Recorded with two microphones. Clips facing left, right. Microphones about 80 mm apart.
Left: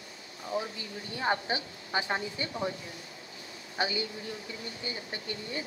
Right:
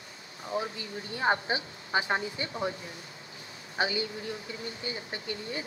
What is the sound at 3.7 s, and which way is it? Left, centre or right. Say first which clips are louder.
Speech: right 2 dB; right.